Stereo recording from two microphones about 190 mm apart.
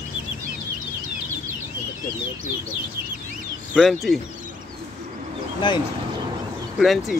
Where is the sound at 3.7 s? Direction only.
Centre (ahead or behind).